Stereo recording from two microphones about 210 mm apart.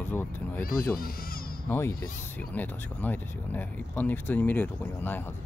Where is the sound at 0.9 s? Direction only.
45° left (ahead or behind).